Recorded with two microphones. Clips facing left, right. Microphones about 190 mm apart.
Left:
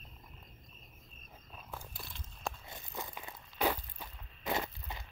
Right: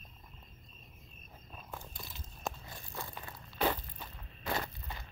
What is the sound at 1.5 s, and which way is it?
Walk, 5° left (ahead or behind).